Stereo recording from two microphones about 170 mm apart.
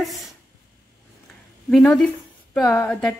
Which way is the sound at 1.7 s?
5° left (ahead or behind).